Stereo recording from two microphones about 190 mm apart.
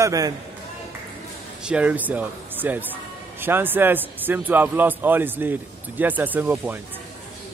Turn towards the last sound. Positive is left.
turn(degrees=-10)  # may be behind; listen again after turning